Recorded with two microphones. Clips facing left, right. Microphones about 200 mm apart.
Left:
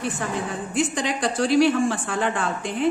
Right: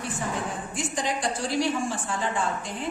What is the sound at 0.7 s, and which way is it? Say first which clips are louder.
A woman's voice: left 6 dB; 70° left (ahead or behind).